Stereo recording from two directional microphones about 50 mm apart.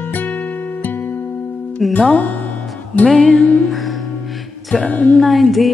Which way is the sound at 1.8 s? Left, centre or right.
Centre.